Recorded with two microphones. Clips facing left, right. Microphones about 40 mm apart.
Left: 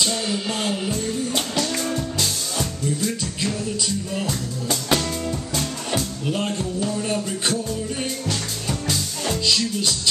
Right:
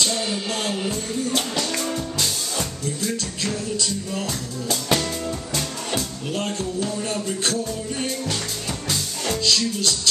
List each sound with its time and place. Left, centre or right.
0.0 s music: centre
5.5 s speech: centre
8.3 s music: centre